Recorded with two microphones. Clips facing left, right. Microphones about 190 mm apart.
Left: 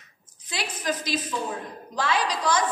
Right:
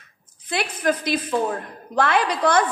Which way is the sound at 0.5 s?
55° right (ahead or behind).